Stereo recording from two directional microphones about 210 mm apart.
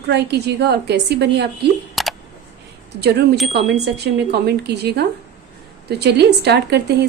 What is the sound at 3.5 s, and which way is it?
A woman's voice, 50° right (ahead or behind).